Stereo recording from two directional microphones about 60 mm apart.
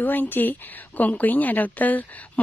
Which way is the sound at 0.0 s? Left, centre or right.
Left.